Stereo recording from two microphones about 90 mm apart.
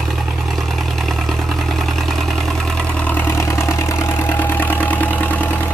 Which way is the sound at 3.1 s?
25° left (ahead or behind).